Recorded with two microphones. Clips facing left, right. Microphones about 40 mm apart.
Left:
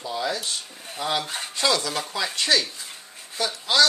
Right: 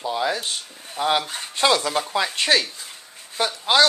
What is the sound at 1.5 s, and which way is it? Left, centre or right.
Speech, right.